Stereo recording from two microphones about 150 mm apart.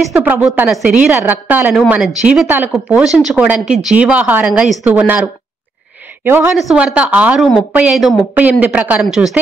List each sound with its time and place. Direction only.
0.1 s a woman's voice: 10° right (ahead or behind)